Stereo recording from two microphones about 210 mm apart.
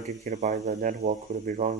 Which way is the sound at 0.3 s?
35° right (ahead or behind).